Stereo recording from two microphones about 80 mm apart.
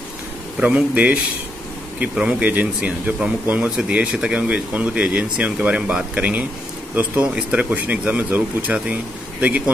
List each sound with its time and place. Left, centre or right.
0.6 s speech: centre